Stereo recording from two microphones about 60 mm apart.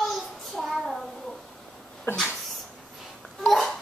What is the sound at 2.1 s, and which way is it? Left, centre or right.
Speech, left.